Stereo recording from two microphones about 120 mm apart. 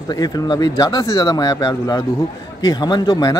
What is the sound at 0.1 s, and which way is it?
Speech, 35° left (ahead or behind).